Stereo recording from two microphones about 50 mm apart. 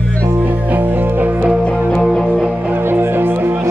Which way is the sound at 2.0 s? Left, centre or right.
Centre.